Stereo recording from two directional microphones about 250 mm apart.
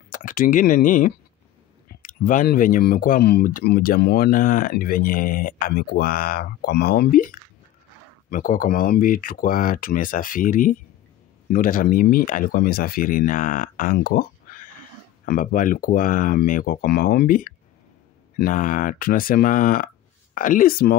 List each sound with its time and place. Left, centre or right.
0.1 s speech: left
8.3 s speech: left